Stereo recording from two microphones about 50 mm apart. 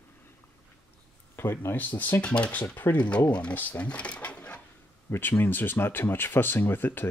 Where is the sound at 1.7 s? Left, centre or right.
Left.